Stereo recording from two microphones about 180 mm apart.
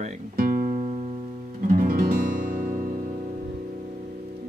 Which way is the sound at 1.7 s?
50° right (ahead or behind).